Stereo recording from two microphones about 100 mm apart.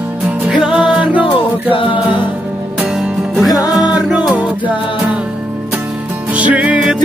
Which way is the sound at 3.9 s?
15° right (ahead or behind).